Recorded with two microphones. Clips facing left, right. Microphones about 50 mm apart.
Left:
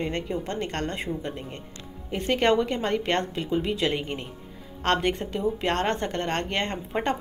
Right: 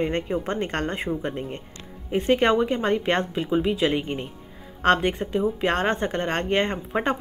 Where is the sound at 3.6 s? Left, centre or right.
Centre.